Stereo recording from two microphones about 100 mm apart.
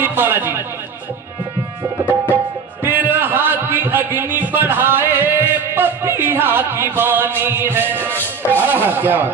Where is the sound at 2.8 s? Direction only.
20° right (ahead or behind).